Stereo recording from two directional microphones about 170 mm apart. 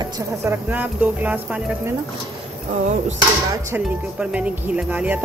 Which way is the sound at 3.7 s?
5° right (ahead or behind).